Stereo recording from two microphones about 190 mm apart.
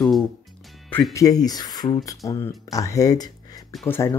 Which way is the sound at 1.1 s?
20° left (ahead or behind).